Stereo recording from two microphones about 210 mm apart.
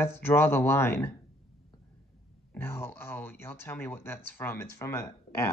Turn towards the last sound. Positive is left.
turn(degrees=15)  # may be behind; listen again after turning